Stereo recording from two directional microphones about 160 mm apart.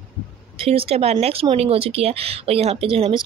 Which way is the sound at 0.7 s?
40° right (ahead or behind).